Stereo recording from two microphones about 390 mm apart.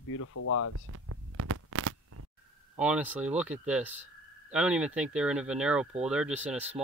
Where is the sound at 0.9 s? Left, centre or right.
Right.